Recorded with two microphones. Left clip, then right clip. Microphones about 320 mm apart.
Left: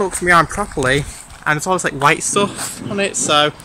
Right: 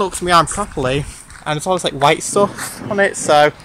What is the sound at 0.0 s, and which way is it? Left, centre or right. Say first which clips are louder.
Speech: even; centre.